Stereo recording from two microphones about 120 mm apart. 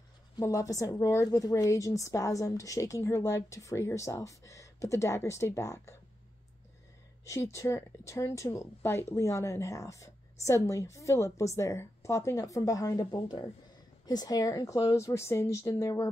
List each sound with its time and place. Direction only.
0.4 s speech: 30° left (ahead or behind)
7.2 s speech: 25° left (ahead or behind)